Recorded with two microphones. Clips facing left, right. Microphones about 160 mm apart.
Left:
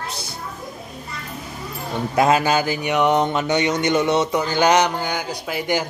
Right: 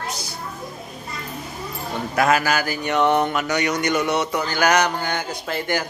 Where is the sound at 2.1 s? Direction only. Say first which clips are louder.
Left 2 dB; 25° left (ahead or behind).